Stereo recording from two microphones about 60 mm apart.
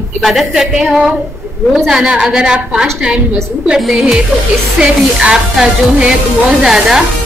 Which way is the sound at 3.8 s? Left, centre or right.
Centre.